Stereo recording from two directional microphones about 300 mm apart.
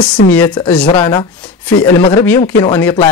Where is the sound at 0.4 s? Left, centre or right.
Centre.